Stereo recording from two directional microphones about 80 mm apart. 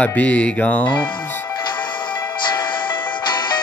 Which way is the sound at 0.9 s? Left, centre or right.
Left.